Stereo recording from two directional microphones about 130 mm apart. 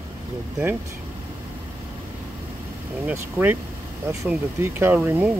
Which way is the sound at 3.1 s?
15° right (ahead or behind).